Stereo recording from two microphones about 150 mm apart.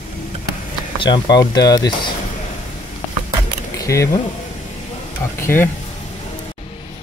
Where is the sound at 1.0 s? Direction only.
30° left (ahead or behind).